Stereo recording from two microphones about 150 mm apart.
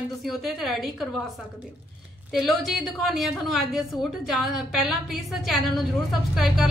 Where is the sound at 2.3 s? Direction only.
Centre (ahead or behind).